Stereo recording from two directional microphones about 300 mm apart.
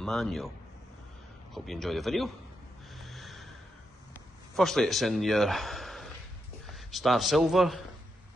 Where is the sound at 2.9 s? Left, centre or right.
Centre.